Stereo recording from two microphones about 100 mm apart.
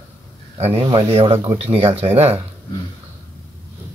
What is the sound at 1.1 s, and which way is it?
Speech, 90° right.